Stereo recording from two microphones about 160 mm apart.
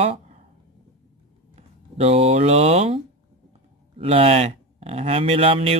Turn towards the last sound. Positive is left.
turn(degrees=-35)  # may be behind; listen again after turning